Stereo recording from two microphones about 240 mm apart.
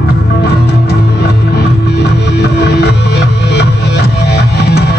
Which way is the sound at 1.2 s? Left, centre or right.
Left.